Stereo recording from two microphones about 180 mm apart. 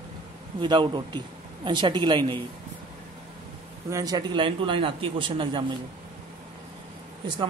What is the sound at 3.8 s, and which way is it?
Speech, 20° right (ahead or behind).